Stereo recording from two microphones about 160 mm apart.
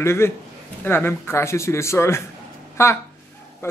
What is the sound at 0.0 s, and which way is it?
A man's voice, 15° left (ahead or behind).